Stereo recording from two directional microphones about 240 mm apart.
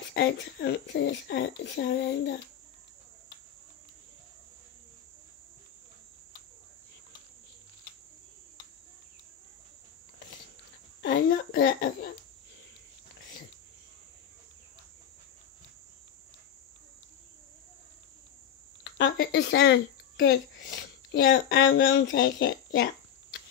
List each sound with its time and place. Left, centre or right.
0.1 s a child's voice: left
11.0 s a sound: left
18.9 s speech: left
22.1 s a child's voice: left